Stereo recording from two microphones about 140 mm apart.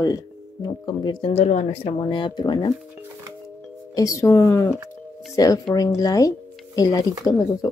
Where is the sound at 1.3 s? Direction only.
50° left (ahead or behind).